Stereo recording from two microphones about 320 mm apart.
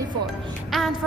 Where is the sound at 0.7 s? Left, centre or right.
Centre.